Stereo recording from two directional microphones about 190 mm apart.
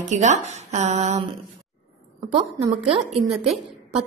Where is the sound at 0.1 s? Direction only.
40° right (ahead or behind).